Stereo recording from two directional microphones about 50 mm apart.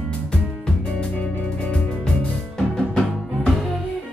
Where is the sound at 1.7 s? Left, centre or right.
Centre.